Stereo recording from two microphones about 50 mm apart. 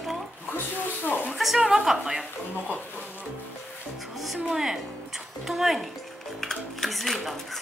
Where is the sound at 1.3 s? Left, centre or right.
Centre.